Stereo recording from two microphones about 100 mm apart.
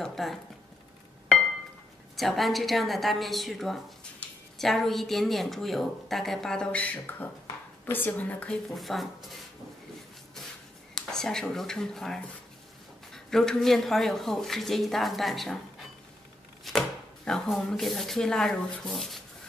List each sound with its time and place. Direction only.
0.0 s a woman's voice: centre (ahead or behind)
2.1 s a woman's voice: centre (ahead or behind)
8.7 s a woman's voice: centre (ahead or behind)
11.0 s a woman's voice: 5° left (ahead or behind)
16.6 s speech: 5° left (ahead or behind)